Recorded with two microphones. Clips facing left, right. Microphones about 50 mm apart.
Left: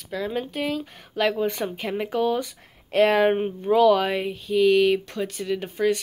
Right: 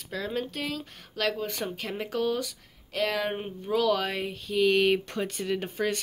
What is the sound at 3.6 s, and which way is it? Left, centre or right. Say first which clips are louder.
Speech: left 7 dB; centre.